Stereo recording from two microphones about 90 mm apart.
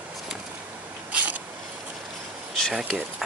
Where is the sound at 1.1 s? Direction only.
15° right (ahead or behind).